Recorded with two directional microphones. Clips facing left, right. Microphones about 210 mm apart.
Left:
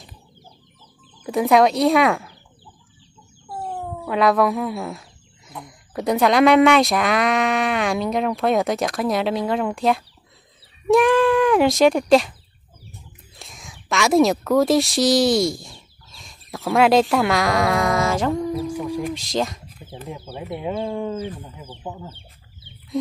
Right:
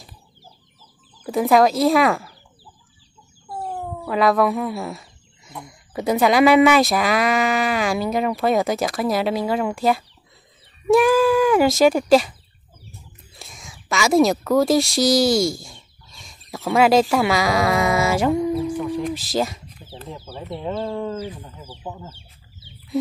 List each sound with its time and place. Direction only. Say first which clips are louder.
1.2 s speech: even; centre (ahead or behind)
3.4 s speech: even; centre (ahead or behind)
18.7 s a sound: right 1 dB; 10° left (ahead or behind)
19.1 s speech: right 1 dB; 5° right (ahead or behind)
20.0 s speech: left 2 dB; 15° left (ahead or behind)
22.1 s chicken: left 2 dB; 55° left (ahead or behind)